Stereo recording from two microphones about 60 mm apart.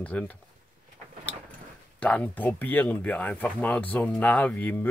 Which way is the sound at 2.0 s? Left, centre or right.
Left.